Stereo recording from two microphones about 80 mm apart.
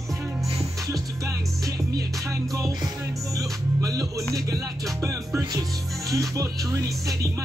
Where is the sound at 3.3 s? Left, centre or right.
Right.